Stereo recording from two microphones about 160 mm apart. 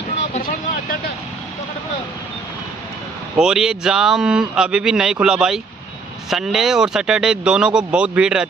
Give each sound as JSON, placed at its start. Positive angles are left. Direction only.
{"t": 3.3, "sound": "speech", "side_deg": -5}